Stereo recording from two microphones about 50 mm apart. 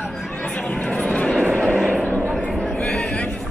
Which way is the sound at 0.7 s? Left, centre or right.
Left.